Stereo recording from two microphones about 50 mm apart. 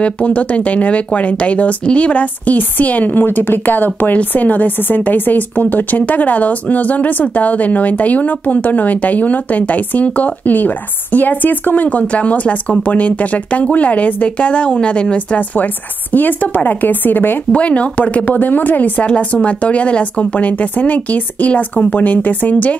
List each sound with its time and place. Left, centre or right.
0.0 s speech: left
3.3 s speech: left
17.5 s speech: left
19.0 s speech: left